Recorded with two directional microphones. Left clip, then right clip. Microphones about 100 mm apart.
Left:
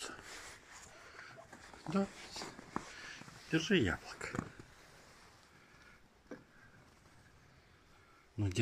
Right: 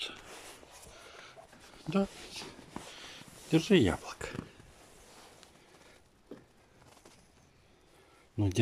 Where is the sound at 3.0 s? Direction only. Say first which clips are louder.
Right 1 dB; 35° right (ahead or behind).